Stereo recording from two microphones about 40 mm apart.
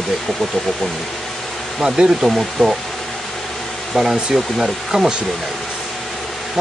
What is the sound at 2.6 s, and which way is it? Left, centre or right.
Speech, centre.